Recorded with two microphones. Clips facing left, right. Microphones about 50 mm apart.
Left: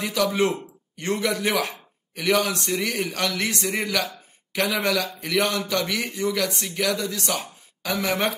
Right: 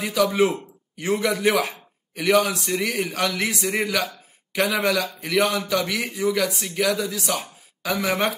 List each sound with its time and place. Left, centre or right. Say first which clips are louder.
0.0 s a man's voice: right 2 dB; centre
4.0 s speech: right 1 dB; centre